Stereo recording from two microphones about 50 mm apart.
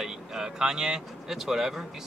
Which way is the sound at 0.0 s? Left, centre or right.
Centre.